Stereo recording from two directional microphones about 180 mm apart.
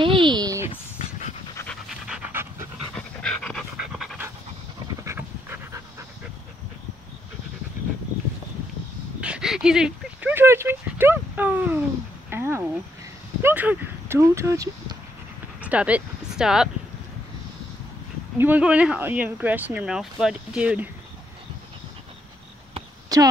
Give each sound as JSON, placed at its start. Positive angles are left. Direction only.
{"t": 0.0, "sound": "a sound", "side_deg": -25}
{"t": 1.9, "sound": "pant", "side_deg": -5}
{"t": 2.9, "sound": "pant", "side_deg": 5}
{"t": 5.0, "sound": "pant", "side_deg": -15}
{"t": 9.2, "sound": "dog", "side_deg": -5}
{"t": 12.3, "sound": "speech", "side_deg": -10}
{"t": 18.4, "sound": "speech", "side_deg": -10}
{"t": 23.0, "sound": "a sound", "side_deg": -20}